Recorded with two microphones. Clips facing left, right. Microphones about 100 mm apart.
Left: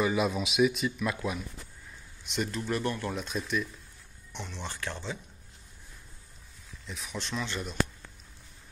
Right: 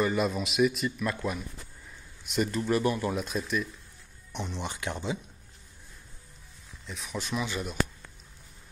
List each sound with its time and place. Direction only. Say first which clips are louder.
0.0 s speech: even; centre (ahead or behind)
4.3 s speech: right 4 dB; 15° right (ahead or behind)
6.9 s speech: right 3 dB; centre (ahead or behind)